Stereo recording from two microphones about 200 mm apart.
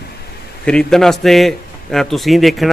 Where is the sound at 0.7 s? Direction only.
5° left (ahead or behind).